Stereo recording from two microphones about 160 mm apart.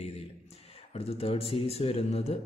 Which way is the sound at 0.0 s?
40° left (ahead or behind).